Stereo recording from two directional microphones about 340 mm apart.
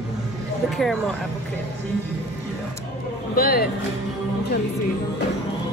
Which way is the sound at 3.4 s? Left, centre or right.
Left.